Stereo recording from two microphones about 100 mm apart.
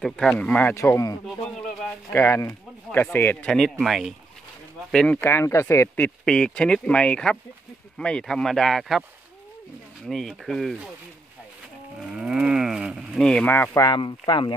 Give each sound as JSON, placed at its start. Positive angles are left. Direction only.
{"t": 0.0, "sound": "speech", "side_deg": 5}
{"t": 0.7, "sound": "speech", "side_deg": 35}
{"t": 3.4, "sound": "speech", "side_deg": 5}
{"t": 4.9, "sound": "speech", "side_deg": 10}
{"t": 5.2, "sound": "speech", "side_deg": 25}
{"t": 5.9, "sound": "speech", "side_deg": 10}
{"t": 10.0, "sound": "speech", "side_deg": 0}
{"t": 12.2, "sound": "speech", "side_deg": -10}
{"t": 13.3, "sound": "speech", "side_deg": 15}
{"t": 13.9, "sound": "speech", "side_deg": 50}